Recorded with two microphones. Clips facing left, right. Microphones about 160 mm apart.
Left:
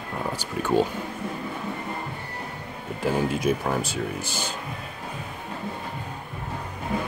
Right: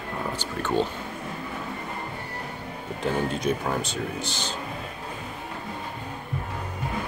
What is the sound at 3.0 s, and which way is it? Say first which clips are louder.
Speech: left 2 dB; 5° left (ahead or behind).